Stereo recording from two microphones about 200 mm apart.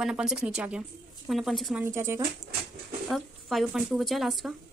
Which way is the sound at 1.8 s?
10° right (ahead or behind).